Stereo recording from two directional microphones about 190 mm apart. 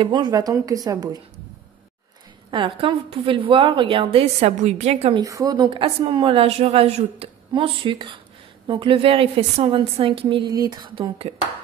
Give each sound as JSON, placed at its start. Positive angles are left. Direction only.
{"t": 0.0, "sound": "a woman's voice", "side_deg": -20}
{"t": 2.5, "sound": "a woman's voice", "side_deg": -25}
{"t": 5.2, "sound": "a woman's voice", "side_deg": -20}